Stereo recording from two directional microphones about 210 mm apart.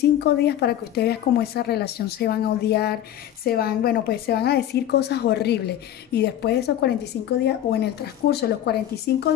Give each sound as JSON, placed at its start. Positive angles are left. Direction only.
{"t": 0.2, "sound": "a woman's voice", "side_deg": 50}